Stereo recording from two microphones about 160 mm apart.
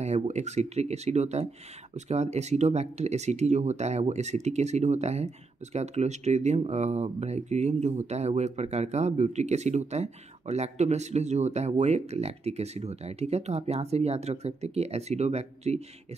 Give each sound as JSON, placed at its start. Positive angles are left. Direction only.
{"t": 0.0, "sound": "speech", "side_deg": -45}